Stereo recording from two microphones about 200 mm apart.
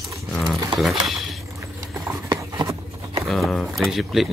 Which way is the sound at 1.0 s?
Centre (ahead or behind).